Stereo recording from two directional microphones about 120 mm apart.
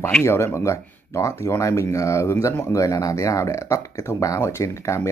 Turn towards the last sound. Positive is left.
turn(degrees=25)  # may be behind; listen again after turning